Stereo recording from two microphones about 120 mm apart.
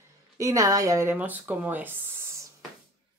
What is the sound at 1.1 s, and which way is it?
Speech, 15° right (ahead or behind).